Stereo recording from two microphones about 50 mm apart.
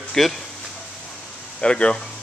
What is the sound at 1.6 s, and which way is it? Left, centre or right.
Speech, centre.